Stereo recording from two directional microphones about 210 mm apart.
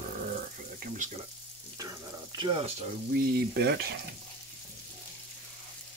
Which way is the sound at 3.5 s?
50° right (ahead or behind).